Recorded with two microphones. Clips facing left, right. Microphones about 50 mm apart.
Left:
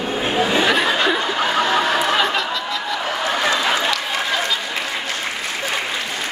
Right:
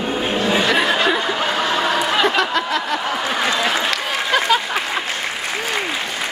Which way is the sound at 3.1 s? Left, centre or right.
Centre.